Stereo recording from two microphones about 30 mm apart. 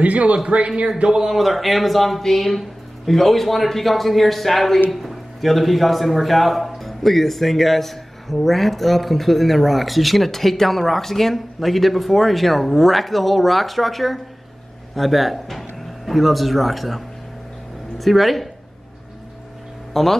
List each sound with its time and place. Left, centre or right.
0.0 s a man's voice: right
1.0 s a man's voice: right
1.3 s a man's voice: centre
19.9 s speech: centre